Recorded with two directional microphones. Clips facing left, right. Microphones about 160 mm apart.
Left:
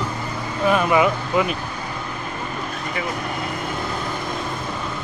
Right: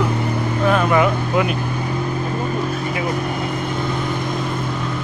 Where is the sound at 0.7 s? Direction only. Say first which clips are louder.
Right 1 dB; 5° left (ahead or behind).